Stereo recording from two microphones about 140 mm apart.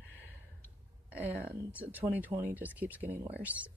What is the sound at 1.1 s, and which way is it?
Speech, 10° right (ahead or behind).